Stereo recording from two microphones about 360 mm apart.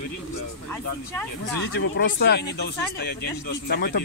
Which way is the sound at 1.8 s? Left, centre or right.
Left.